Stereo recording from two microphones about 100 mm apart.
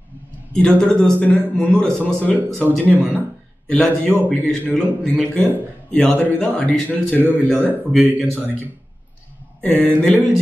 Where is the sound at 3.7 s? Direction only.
10° left (ahead or behind).